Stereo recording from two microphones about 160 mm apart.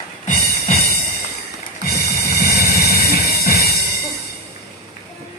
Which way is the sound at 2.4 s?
75° left (ahead or behind).